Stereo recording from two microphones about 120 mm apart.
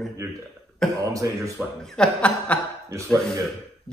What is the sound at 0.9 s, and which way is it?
Speech, 30° right (ahead or behind).